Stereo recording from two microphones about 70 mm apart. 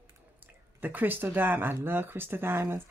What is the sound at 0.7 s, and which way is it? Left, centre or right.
A woman's voice, right.